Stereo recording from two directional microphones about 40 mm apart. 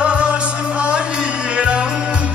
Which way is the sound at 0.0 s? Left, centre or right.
Right.